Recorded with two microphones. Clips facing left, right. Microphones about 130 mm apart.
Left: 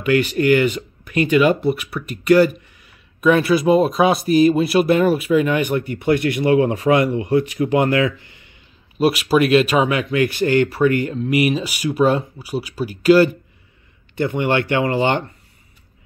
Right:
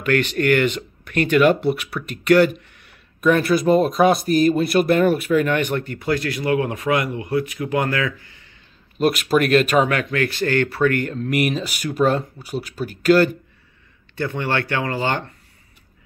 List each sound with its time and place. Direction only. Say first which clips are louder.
0.0 s speech: left 3 dB; 10° left (ahead or behind)
6.0 s speech: left 5 dB; 20° left (ahead or behind)
9.0 s speech: left 2 dB; 5° left (ahead or behind)
14.1 s speech: left 4 dB; 20° left (ahead or behind)